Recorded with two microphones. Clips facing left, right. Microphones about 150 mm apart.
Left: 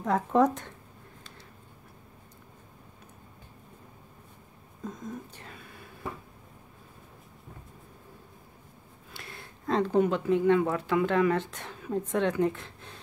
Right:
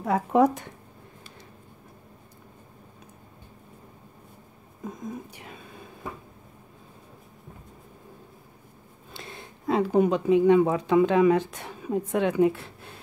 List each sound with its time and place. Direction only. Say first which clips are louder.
0.0 s speech: right 3 dB; 10° right (ahead or behind)
4.8 s speech: right 3 dB; 15° right (ahead or behind)
9.1 s a sound: right 4 dB; 20° right (ahead or behind)
9.7 s speech: right 3 dB; 10° right (ahead or behind)